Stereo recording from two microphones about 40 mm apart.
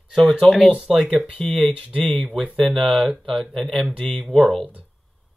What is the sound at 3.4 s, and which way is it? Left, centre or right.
Speech, centre.